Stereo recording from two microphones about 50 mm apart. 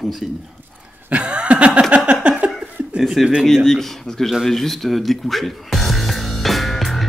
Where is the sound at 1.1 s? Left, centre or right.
Right.